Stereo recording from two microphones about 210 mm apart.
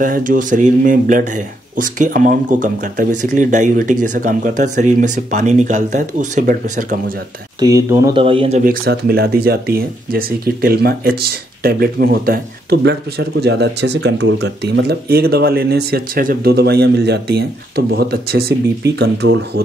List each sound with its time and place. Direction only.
0.0 s speech: 40° right (ahead or behind)
7.6 s speech: 15° right (ahead or behind)
8.2 s speech: 25° right (ahead or behind); by 19.6 s 50° right (ahead or behind)